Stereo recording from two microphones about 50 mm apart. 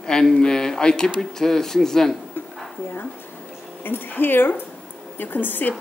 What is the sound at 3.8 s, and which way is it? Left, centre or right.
A woman's voice, left.